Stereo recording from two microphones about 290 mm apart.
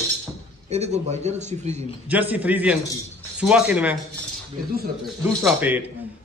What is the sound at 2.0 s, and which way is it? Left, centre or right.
A man's voice, centre.